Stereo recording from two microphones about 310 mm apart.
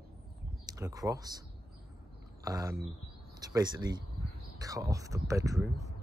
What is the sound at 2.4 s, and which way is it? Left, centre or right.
Speech, centre.